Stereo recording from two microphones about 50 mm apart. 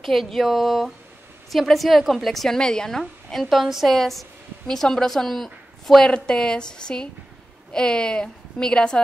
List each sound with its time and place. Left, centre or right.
0.0 s a woman's voice: centre
6.0 s a woman's voice: centre